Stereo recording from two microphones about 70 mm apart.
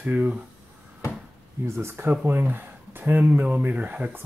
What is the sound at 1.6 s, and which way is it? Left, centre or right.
Speech, right.